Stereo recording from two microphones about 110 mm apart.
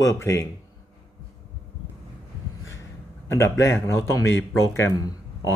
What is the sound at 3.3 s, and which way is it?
Speech, 25° left (ahead or behind).